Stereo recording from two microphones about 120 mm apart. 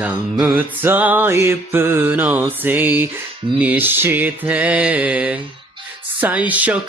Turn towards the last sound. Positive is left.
turn(degrees=-10)  # may be behind; listen again after turning